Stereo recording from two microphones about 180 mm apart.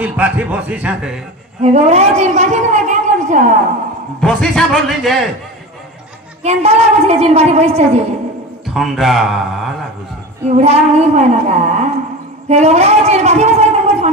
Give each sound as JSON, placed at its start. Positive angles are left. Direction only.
{"t": 0.0, "sound": "a man's voice", "side_deg": -10}
{"t": 1.6, "sound": "a man's voice", "side_deg": -35}
{"t": 4.2, "sound": "a man's voice", "side_deg": 5}
{"t": 6.4, "sound": "a woman's voice", "side_deg": -35}
{"t": 8.6, "sound": "a man's voice", "side_deg": 0}
{"t": 10.5, "sound": "a woman's voice", "side_deg": -35}